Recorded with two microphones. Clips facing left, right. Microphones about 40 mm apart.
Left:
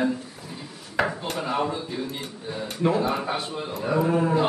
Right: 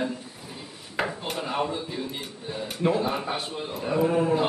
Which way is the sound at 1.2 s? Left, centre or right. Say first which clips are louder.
Left 2 dB; centre.